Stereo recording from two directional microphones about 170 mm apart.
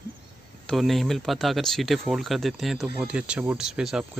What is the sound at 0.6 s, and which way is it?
Speech, centre (ahead or behind).